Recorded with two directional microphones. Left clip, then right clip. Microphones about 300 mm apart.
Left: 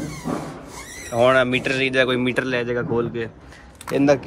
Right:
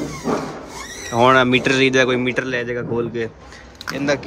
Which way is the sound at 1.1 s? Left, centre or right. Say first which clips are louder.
Right 3 dB; centre.